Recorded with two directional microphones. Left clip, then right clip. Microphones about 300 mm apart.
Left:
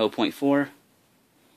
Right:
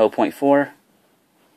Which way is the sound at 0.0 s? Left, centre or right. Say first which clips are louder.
Right 7 dB; centre.